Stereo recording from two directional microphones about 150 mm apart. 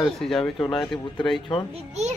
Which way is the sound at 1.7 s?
50° right (ahead or behind).